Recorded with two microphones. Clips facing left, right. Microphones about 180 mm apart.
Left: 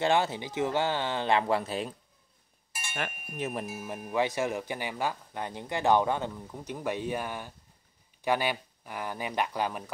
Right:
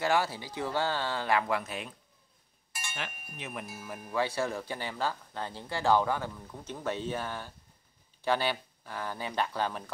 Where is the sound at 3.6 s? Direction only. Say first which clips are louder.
Left 5 dB; 15° left (ahead or behind).